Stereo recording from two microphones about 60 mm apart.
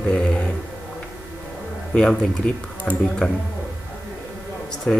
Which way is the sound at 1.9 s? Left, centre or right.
Centre.